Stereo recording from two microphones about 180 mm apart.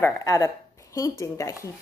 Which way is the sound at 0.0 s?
15° left (ahead or behind).